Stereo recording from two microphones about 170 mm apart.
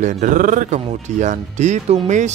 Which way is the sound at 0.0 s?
45° right (ahead or behind).